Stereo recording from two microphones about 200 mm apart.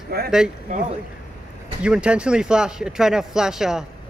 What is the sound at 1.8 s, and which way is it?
A man's voice, 5° right (ahead or behind).